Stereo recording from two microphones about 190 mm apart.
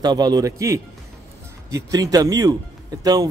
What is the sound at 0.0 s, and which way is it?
Speech, 20° right (ahead or behind).